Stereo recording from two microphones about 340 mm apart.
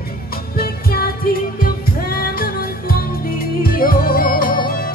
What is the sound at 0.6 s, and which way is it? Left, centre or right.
Music, left.